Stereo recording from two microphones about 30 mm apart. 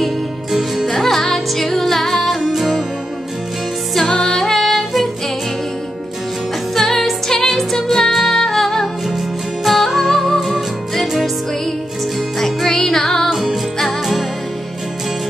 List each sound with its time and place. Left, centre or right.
0.0 s music: centre
0.8 s music: centre
3.9 s music: centre
6.7 s music: centre
9.8 s music: centre
13.3 s music: centre